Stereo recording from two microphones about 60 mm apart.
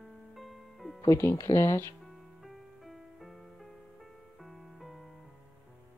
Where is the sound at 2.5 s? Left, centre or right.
Centre.